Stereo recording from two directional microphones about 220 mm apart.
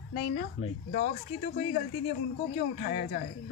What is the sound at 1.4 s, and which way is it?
Speech, 35° left (ahead or behind).